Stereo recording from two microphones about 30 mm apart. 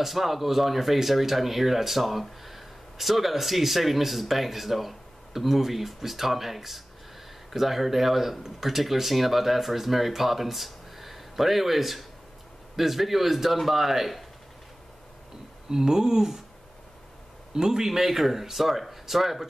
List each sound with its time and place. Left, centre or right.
0.0 s speech: centre
15.7 s speech: centre
17.6 s speech: centre